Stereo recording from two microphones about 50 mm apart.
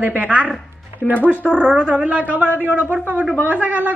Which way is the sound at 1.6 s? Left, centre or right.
Centre.